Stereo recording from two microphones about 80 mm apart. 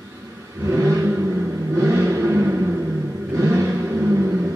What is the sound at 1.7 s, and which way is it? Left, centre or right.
Music, right.